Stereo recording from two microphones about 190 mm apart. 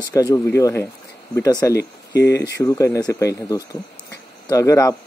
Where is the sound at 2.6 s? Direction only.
15° left (ahead or behind).